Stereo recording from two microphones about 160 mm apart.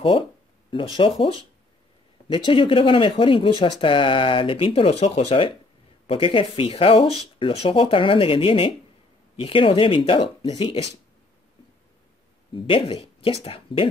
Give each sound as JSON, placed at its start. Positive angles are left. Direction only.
{"t": 0.7, "sound": "speech", "side_deg": 30}
{"t": 12.5, "sound": "speech", "side_deg": 35}